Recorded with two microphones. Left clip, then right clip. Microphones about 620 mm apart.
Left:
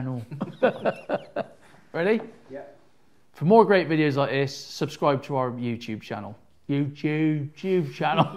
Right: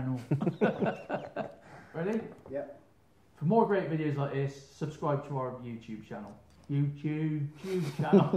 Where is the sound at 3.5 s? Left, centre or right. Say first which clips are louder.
Left 10 dB; left.